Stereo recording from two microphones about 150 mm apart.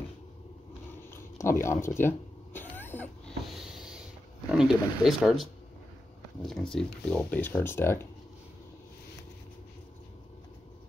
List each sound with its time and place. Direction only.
1.1 s cat: 20° left (ahead or behind)
3.4 s a sound: centre (ahead or behind)
4.5 s speech: centre (ahead or behind)
6.7 s speech: 5° left (ahead or behind)